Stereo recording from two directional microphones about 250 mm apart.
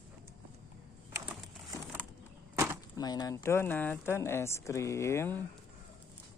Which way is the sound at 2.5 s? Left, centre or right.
Centre.